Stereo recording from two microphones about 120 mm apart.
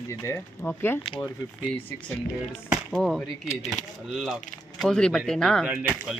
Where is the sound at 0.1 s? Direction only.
25° left (ahead or behind).